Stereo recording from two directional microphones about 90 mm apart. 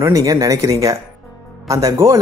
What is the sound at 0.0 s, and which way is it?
Speech, 40° right (ahead or behind).